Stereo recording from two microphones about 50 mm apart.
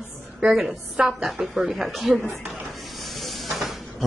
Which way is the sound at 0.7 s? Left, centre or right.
Centre.